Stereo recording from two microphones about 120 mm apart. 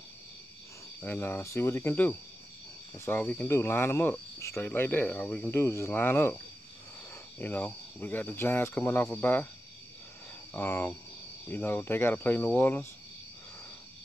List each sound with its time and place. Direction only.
1.0 s cricket: 20° left (ahead or behind)
7.3 s speech: 15° left (ahead or behind)
10.5 s speech: 20° left (ahead or behind)
11.4 s cricket: 20° left (ahead or behind)